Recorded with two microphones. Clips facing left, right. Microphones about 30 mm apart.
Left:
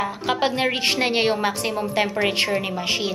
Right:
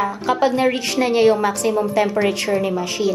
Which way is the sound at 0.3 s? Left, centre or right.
Left.